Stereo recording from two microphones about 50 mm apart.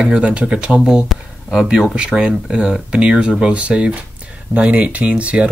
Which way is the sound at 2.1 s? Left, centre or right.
Centre.